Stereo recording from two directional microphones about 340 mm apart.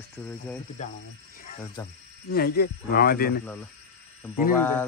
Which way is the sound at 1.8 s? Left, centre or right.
Centre.